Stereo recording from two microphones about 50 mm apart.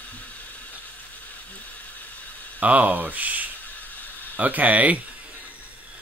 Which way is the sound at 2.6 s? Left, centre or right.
Right.